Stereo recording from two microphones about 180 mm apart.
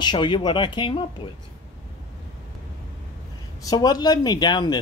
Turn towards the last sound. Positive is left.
turn(degrees=25)  # may be behind; listen again after turning